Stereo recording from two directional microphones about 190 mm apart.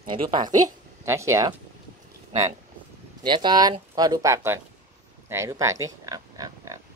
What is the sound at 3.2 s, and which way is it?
Speech, 25° right (ahead or behind).